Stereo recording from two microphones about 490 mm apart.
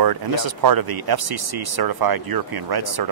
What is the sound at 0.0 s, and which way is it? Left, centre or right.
A man's voice, right.